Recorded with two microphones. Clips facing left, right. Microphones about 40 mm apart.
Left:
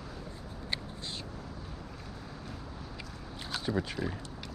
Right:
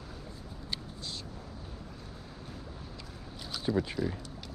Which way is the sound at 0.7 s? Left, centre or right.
Left.